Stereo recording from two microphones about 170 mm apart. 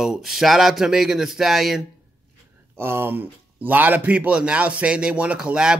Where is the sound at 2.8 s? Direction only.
15° right (ahead or behind).